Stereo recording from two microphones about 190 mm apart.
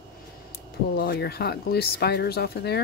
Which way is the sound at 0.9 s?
60° left (ahead or behind).